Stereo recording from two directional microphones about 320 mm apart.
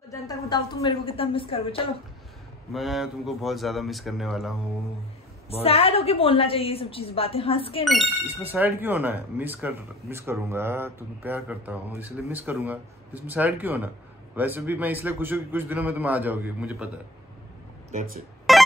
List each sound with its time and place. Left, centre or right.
0.1 s a woman's voice: centre
2.7 s speech: centre
5.5 s a woman's voice: centre
7.8 s speech: centre
18.5 s music: centre